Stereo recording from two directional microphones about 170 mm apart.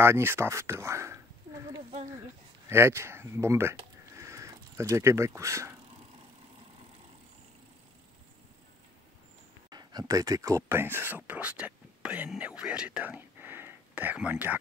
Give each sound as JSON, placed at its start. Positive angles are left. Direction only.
{"t": 0.0, "sound": "speech", "side_deg": -15}
{"t": 2.7, "sound": "speech", "side_deg": -15}
{"t": 4.2, "sound": "a sound", "side_deg": -15}
{"t": 9.7, "sound": "speech", "side_deg": -25}